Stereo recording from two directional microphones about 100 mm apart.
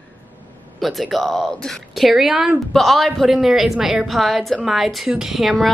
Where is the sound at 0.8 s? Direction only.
Centre (ahead or behind).